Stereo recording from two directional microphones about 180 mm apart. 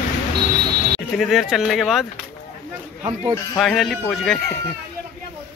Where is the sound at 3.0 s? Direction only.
20° right (ahead or behind).